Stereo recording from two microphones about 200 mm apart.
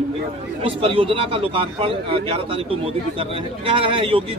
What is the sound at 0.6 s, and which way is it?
Speech, 25° right (ahead or behind).